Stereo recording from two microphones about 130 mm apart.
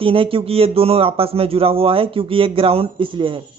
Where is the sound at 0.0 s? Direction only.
45° right (ahead or behind).